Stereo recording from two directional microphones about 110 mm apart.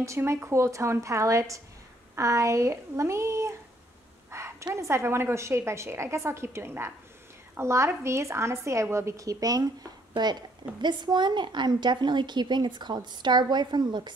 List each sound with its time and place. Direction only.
0.0 s a woman's voice: 25° right (ahead or behind)
4.3 s a sound: 25° right (ahead or behind)
4.7 s a woman's voice: 25° right (ahead or behind)
10.8 s a woman's voice: 40° right (ahead or behind)